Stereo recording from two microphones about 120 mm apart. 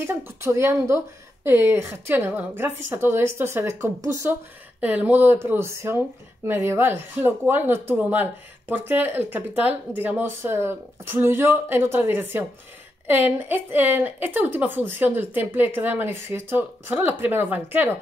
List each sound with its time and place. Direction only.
0.0 s speech: 20° right (ahead or behind)